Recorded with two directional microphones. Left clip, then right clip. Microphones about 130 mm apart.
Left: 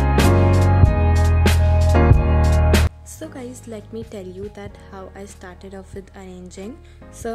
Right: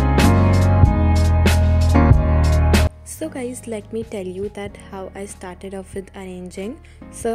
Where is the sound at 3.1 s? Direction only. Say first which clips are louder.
Right 6 dB; 25° right (ahead or behind).